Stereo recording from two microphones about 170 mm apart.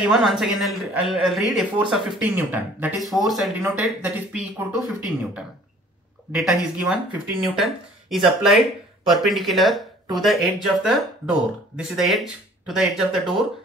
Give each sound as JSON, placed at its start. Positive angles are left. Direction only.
{"t": 0.0, "sound": "speech", "side_deg": -5}